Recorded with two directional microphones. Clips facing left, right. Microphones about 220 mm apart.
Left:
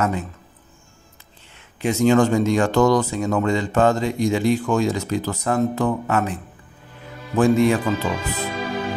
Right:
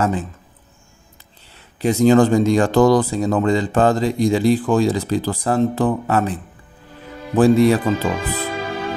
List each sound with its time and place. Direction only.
0.0 s speech: 30° right (ahead or behind)
1.8 s speech: 35° right (ahead or behind)
7.3 s speech: 35° right (ahead or behind)